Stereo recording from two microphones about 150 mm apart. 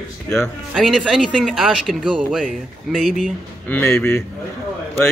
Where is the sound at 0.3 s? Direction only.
5° left (ahead or behind).